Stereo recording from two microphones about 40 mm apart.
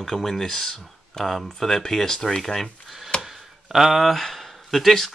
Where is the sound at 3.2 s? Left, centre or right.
Centre.